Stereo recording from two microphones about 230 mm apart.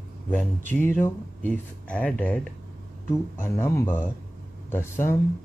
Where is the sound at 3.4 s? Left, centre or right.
Centre.